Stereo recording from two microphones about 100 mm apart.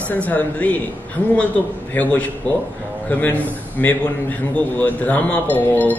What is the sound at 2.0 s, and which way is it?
A man's voice, 15° left (ahead or behind).